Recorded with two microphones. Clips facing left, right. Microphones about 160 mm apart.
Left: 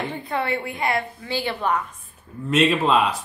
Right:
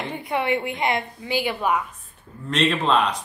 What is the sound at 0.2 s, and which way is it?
A woman's voice, 15° right (ahead or behind).